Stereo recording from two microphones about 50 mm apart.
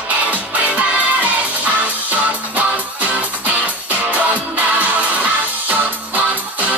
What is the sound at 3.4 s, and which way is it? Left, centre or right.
Music, right.